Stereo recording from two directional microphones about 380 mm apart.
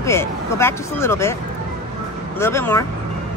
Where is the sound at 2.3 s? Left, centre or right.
Centre.